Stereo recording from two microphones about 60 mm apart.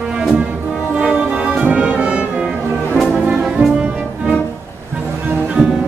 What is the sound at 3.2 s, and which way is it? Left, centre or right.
Brass instrument, centre.